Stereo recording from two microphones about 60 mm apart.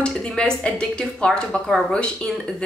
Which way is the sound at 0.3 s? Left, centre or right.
Centre.